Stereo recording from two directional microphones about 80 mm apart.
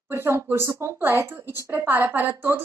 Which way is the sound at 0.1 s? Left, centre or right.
Right.